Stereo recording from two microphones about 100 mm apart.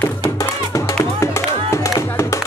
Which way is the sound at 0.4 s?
30° left (ahead or behind).